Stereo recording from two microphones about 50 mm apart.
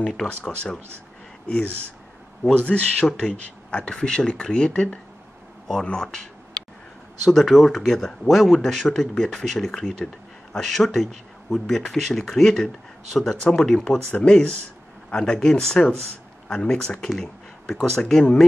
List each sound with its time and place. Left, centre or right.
0.0 s speech: centre
2.4 s speech: left
7.2 s speech: centre
17.1 s a sound: centre
17.8 s speech: centre